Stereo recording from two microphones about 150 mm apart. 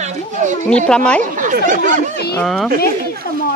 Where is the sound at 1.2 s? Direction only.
60° right (ahead or behind).